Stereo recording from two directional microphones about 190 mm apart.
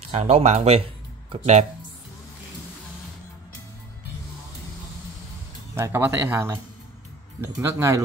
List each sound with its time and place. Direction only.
0.1 s speech: 35° right (ahead or behind)
5.8 s speech: 10° right (ahead or behind)